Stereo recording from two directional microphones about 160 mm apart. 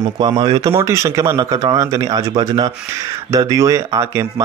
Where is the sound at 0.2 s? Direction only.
30° right (ahead or behind).